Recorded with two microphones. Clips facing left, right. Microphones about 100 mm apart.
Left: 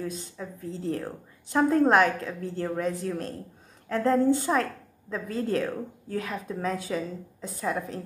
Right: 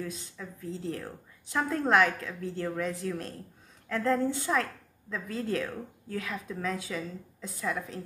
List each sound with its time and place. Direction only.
0.0 s a woman's voice: 35° left (ahead or behind)